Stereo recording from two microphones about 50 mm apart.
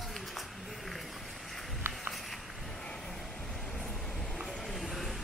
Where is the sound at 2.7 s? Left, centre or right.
Centre.